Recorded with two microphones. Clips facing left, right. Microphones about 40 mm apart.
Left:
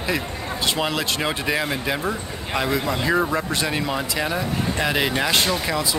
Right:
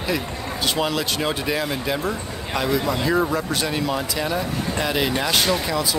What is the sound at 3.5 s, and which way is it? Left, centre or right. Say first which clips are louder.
Speech: even; centre.